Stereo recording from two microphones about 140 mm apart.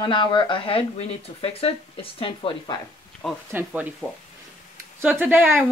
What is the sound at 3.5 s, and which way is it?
Speech, 10° right (ahead or behind).